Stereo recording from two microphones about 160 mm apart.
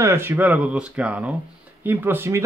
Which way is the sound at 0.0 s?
15° right (ahead or behind).